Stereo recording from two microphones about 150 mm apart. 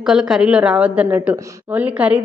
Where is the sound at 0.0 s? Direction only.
5° right (ahead or behind).